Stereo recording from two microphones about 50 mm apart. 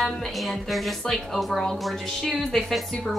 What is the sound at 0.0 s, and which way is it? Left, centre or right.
Speech, centre.